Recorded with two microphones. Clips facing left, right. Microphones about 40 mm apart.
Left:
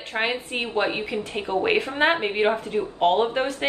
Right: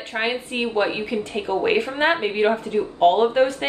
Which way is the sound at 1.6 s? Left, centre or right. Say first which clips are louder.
Right 1 dB; centre.